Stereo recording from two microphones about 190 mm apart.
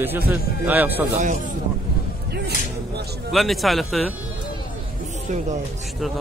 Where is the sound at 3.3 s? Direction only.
Centre (ahead or behind).